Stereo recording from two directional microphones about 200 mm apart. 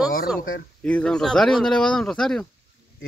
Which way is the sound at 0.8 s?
5° left (ahead or behind).